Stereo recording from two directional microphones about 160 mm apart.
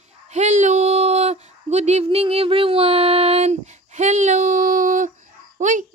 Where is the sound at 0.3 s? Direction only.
50° right (ahead or behind).